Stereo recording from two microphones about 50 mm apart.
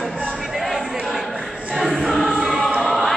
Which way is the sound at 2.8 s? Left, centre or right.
Centre.